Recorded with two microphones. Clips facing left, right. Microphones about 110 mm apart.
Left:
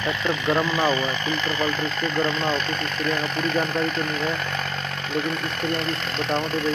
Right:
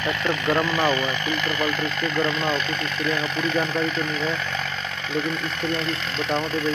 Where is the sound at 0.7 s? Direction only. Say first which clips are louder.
Even; 25° left (ahead or behind).